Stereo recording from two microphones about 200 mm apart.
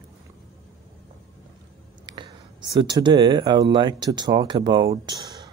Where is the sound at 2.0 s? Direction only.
25° right (ahead or behind).